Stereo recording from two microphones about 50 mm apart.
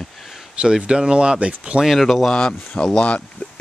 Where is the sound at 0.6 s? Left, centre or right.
Centre.